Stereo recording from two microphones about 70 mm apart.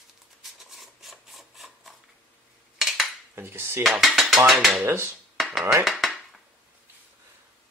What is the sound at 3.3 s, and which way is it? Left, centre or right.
Speech, right.